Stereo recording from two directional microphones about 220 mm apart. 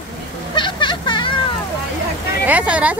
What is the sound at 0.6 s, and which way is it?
Vehicle, 20° left (ahead or behind).